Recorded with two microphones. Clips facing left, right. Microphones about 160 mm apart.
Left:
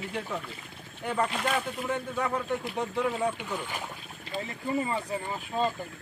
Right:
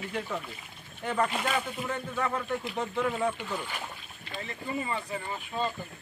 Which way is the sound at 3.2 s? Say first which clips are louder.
Even; 10° left (ahead or behind).